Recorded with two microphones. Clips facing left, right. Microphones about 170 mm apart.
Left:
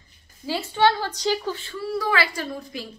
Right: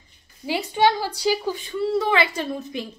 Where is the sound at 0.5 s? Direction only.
15° right (ahead or behind).